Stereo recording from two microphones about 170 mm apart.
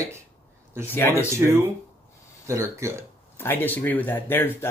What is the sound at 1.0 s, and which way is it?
Speech, 15° left (ahead or behind).